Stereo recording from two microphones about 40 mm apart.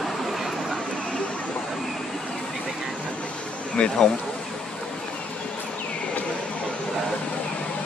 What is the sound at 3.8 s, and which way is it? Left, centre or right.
Speech, left.